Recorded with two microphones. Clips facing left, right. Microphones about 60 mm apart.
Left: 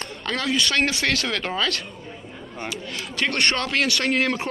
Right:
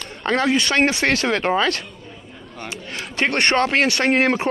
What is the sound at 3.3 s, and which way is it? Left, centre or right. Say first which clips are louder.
Speech: right 5 dB; right.